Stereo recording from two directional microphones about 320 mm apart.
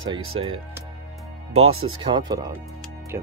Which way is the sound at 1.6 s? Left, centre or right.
Right.